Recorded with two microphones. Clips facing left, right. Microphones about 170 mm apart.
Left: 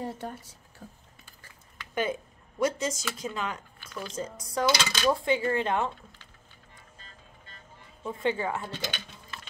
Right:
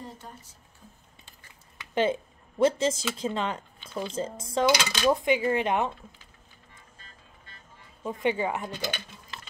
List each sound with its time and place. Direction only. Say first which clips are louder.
0.0 s a sound: left 7 dB; 75° left (ahead or behind)
2.6 s speech: right 5 dB; 30° right (ahead or behind)
4.6 s speech: right 2 dB; 15° right (ahead or behind)
8.0 s speech: right 2 dB; 15° right (ahead or behind)